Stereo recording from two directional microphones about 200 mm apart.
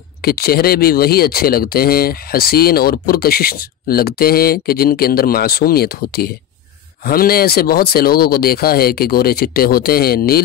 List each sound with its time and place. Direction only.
0.2 s speech: 50° left (ahead or behind)